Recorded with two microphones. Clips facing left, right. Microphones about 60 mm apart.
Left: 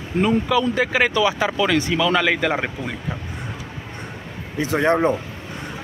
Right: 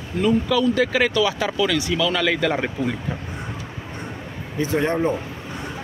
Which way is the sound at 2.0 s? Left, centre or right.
Centre.